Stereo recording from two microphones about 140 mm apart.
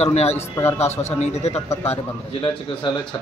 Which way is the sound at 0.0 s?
50° left (ahead or behind).